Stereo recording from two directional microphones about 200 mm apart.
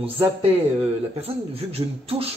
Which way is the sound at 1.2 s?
30° right (ahead or behind).